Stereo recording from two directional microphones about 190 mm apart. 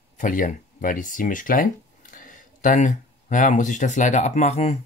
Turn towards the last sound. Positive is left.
turn(degrees=35)  # may be behind; listen again after turning